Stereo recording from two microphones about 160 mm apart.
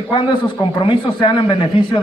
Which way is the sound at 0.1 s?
30° left (ahead or behind).